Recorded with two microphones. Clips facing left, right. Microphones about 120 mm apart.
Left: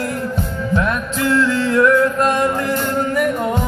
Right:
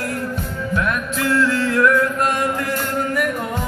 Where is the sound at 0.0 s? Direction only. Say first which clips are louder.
Left 3 dB; 25° left (ahead or behind).